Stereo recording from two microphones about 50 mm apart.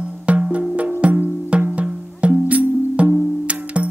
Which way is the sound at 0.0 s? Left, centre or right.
Right.